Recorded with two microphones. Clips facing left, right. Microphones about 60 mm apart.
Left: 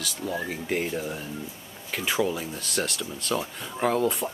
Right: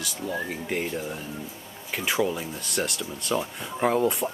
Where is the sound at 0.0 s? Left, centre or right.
Centre.